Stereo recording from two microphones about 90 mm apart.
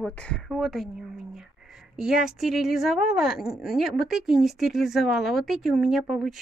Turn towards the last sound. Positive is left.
turn(degrees=-5)  # may be behind; listen again after turning